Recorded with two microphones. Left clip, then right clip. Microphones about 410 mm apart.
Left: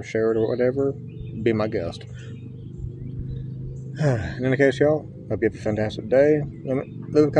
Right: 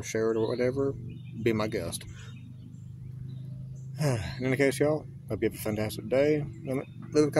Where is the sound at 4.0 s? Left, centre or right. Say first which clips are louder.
Left 7 dB; right.